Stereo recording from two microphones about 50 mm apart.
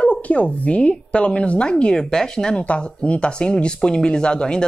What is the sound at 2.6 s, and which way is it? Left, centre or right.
Speech, left.